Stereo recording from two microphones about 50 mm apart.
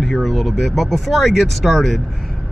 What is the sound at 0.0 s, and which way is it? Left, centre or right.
Speech, centre.